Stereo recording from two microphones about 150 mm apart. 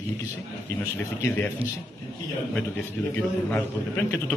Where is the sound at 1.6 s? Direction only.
40° right (ahead or behind).